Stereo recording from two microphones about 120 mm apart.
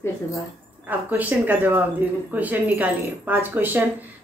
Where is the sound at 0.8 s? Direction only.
15° right (ahead or behind).